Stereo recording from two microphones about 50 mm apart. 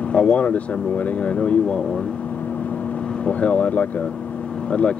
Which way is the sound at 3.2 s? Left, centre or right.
Left.